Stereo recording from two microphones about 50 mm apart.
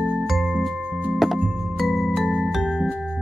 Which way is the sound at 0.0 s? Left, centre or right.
Right.